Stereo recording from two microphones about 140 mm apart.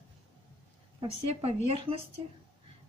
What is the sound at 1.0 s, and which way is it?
A woman's voice, 40° right (ahead or behind).